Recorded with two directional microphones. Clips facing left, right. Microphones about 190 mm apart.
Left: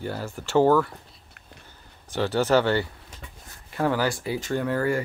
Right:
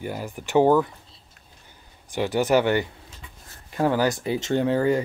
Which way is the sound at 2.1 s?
15° right (ahead or behind).